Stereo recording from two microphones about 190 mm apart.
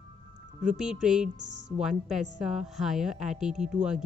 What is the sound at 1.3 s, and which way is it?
Speech, 65° right (ahead or behind).